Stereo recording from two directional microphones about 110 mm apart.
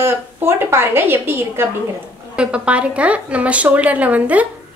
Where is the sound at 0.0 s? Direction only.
20° right (ahead or behind).